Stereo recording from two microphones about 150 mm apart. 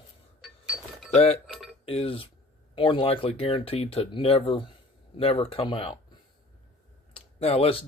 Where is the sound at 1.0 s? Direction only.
45° left (ahead or behind).